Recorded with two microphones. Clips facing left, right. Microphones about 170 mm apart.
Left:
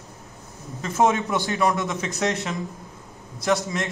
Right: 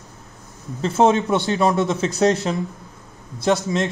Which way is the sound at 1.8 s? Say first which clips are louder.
Right 7 dB; 35° right (ahead or behind).